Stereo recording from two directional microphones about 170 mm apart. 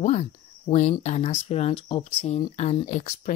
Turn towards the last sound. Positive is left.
turn(degrees=45)  # may be behind; listen again after turning